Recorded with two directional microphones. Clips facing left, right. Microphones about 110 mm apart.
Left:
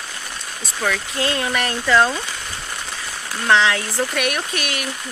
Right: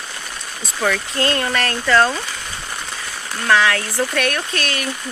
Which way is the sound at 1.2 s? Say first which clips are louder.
Right 1 dB; 10° left (ahead or behind).